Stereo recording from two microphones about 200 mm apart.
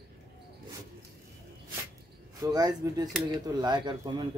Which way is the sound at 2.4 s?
20° right (ahead or behind).